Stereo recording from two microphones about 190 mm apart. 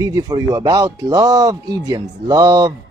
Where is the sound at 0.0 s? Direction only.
20° right (ahead or behind).